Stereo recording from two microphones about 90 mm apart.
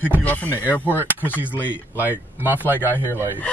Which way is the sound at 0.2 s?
15° left (ahead or behind).